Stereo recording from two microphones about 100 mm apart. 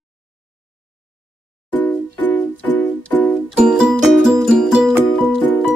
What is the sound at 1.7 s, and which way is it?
Music, 20° left (ahead or behind).